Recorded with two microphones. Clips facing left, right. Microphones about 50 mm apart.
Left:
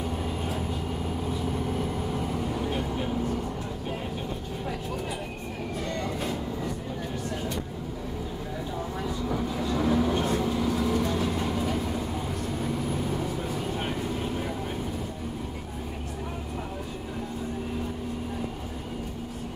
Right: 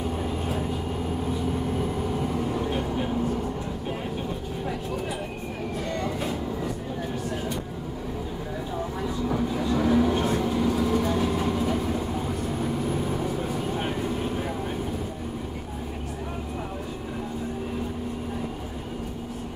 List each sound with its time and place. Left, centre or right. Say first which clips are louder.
1.2 s vehicle: right 2 dB; centre
5.9 s vehicle: right 2 dB; centre
9.0 s vehicle: right 3 dB; centre